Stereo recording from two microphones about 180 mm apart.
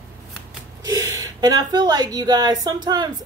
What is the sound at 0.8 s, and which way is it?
A woman's voice, 20° right (ahead or behind).